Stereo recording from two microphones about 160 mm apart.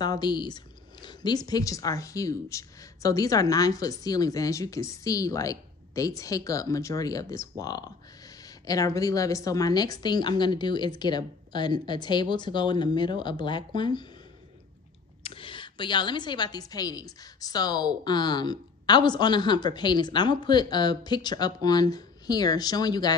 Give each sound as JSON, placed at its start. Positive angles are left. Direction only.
{"t": 0.0, "sound": "a woman's voice", "side_deg": 25}
{"t": 15.2, "sound": "a woman's voice", "side_deg": 35}